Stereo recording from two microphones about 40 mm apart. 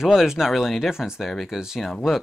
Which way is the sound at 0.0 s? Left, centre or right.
Centre.